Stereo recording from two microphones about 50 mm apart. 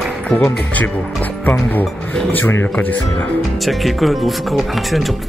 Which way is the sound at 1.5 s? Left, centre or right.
Left.